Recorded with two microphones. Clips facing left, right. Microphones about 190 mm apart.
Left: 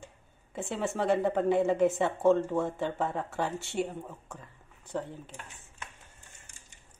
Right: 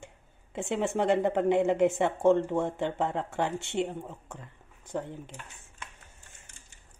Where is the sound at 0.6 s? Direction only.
15° right (ahead or behind).